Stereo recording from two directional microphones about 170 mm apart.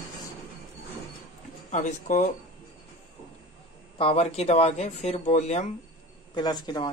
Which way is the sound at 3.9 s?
35° left (ahead or behind).